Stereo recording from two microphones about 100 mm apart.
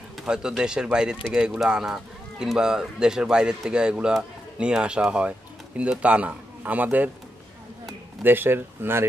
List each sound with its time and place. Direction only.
0.2 s speech: 5° right (ahead or behind)
8.2 s speech: 20° right (ahead or behind)